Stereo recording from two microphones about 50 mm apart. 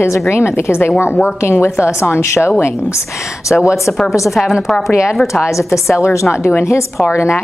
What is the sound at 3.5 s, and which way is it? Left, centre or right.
Speech, left.